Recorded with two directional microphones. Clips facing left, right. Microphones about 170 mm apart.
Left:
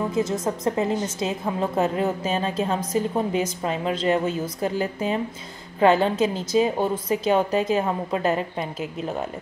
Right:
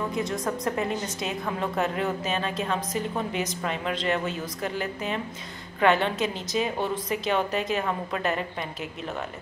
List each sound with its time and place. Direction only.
0.1 s a woman's voice: 25° left (ahead or behind)